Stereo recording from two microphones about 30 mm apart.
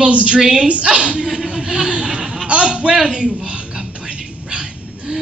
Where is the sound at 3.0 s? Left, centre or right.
Right.